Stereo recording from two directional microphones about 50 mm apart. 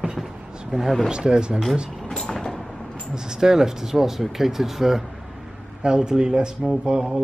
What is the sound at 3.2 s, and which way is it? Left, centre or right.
Speech, centre.